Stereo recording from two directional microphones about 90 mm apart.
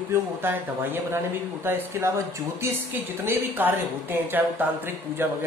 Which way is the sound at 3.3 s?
20° right (ahead or behind).